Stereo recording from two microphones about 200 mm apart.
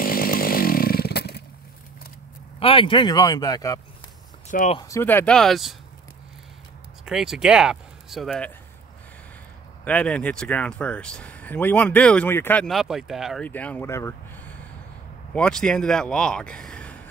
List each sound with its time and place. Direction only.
0.0 s chainsaw: 45° left (ahead or behind)
2.6 s speech: 25° left (ahead or behind)
4.5 s speech: 40° left (ahead or behind)
4.7 s speech: 15° left (ahead or behind); by 5.8 s centre (ahead or behind)
7.1 s speech: centre (ahead or behind)
9.8 s speech: 5° left (ahead or behind)